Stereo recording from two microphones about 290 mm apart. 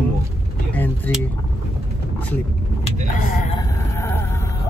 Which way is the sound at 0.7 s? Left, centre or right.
Centre.